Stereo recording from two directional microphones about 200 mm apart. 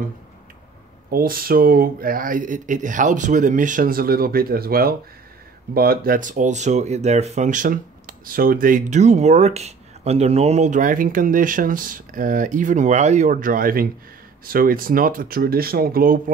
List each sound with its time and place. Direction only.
1.1 s speech: 45° right (ahead or behind)